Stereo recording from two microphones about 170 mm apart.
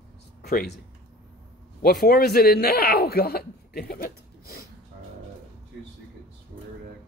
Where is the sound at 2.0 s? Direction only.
65° left (ahead or behind).